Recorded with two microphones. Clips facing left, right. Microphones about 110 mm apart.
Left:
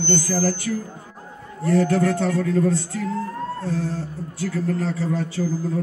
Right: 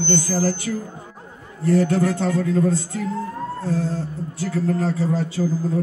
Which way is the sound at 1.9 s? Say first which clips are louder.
Even; 25° right (ahead or behind).